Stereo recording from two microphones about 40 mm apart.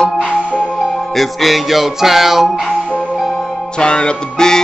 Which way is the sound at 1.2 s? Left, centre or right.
Centre.